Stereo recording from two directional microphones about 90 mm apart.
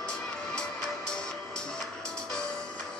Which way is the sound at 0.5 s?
10° left (ahead or behind).